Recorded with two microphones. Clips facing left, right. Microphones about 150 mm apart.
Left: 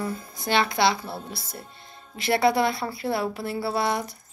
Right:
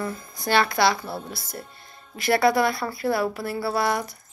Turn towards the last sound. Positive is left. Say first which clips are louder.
# right 1 dB
turn(degrees=25)  # may be behind; listen again after turning